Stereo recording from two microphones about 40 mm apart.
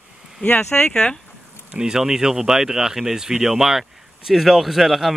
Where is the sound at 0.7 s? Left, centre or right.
Left.